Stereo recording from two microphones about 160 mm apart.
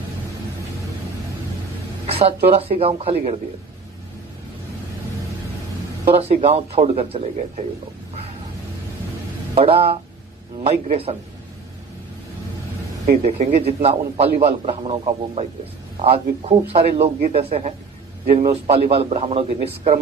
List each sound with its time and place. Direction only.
2.0 s a man's voice: 40° right (ahead or behind)
6.0 s a man's voice: 40° right (ahead or behind)
9.6 s a man's voice: 40° right (ahead or behind)
13.2 s a man's voice: 45° right (ahead or behind)